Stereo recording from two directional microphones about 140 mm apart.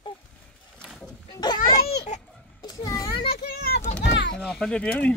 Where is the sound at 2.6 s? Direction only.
25° left (ahead or behind).